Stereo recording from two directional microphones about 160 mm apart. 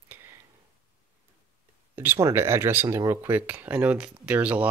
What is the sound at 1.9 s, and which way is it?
Speech, 15° right (ahead or behind).